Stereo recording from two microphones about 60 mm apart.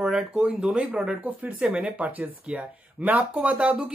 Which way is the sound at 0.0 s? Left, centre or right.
Centre.